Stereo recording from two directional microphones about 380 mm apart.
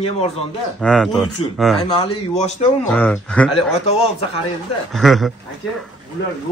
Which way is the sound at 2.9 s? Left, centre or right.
Centre.